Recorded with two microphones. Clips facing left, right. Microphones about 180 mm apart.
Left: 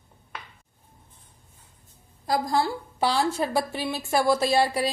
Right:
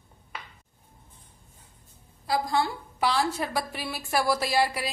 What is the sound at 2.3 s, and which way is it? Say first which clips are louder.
A woman's voice: left 2 dB; 35° left (ahead or behind).